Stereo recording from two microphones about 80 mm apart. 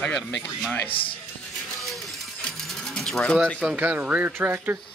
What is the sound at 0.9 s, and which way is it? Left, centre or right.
Speech, left.